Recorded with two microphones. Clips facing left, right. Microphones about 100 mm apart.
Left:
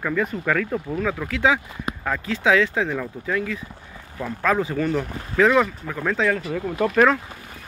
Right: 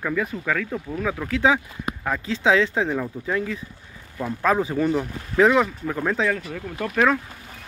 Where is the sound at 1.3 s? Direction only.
25° right (ahead or behind).